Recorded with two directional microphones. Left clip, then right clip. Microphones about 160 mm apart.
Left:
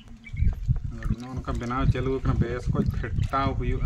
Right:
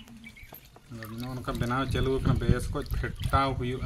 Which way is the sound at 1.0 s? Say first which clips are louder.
Right 1 dB; 5° left (ahead or behind).